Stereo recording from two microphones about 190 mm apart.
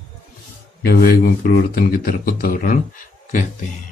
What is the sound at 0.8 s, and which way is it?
Speech, 50° left (ahead or behind).